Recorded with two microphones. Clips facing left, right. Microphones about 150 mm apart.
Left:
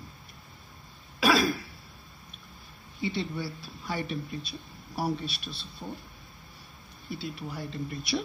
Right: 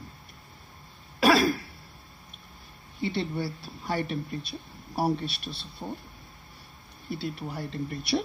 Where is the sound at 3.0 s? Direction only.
60° right (ahead or behind).